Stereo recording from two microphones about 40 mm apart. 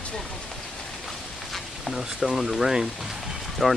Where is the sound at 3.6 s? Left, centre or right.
Centre.